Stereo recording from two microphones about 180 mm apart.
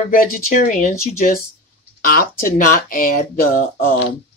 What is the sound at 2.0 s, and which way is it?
Speech, 55° left (ahead or behind).